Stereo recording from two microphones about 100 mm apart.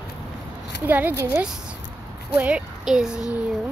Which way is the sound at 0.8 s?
15° right (ahead or behind).